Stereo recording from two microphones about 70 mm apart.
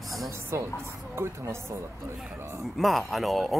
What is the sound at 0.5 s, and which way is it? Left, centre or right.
A woman's voice, right.